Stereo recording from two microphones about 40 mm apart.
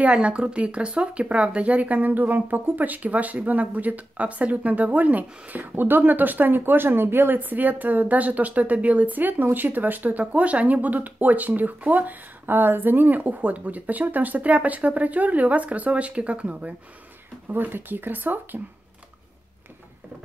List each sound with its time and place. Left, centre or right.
0.1 s speech: right
5.8 s speech: right
17.5 s speech: right